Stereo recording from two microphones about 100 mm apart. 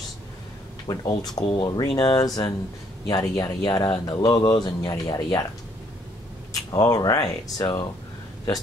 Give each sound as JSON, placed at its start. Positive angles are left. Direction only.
{"t": 0.8, "sound": "speech", "side_deg": 40}
{"t": 2.1, "sound": "speech", "side_deg": 35}
{"t": 6.5, "sound": "speech", "side_deg": 40}